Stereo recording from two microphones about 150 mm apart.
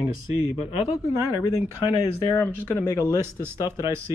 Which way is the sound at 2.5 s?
10° left (ahead or behind).